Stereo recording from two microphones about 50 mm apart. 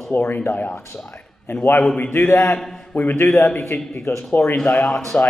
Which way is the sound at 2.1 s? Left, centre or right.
Left.